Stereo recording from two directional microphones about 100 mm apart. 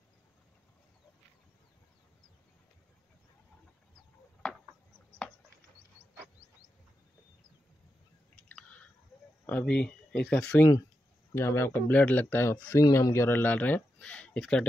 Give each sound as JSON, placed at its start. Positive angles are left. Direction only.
{"t": 9.5, "sound": "speech", "side_deg": 15}
{"t": 11.3, "sound": "speech", "side_deg": 25}